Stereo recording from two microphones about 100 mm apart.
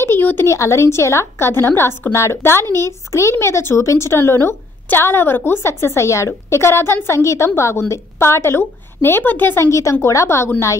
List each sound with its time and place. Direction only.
0.0 s speech: 20° left (ahead or behind)